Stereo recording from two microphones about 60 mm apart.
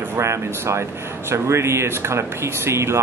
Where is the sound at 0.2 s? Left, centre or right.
Right.